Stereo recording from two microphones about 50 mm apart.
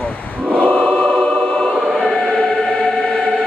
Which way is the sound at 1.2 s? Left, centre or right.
Centre.